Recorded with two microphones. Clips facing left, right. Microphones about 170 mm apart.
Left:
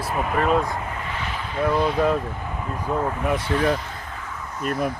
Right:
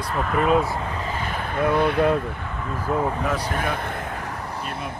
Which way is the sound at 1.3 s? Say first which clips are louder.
Right 1 dB; 55° right (ahead or behind).